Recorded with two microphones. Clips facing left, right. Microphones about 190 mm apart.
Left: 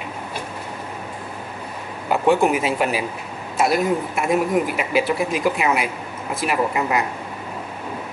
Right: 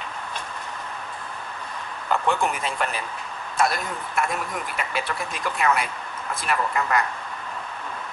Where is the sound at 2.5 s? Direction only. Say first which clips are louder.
Left 7 dB; 5° left (ahead or behind).